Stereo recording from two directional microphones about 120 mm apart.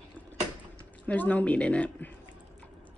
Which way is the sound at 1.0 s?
15° left (ahead or behind).